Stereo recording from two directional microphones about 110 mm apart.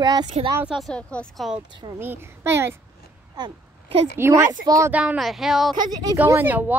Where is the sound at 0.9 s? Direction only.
10° left (ahead or behind).